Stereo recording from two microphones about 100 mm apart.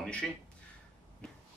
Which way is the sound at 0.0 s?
10° left (ahead or behind).